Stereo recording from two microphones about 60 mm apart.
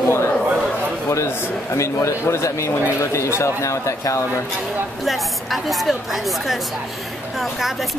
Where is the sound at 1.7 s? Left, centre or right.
Left.